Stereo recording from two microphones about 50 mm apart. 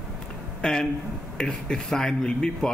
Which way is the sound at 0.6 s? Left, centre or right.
Centre.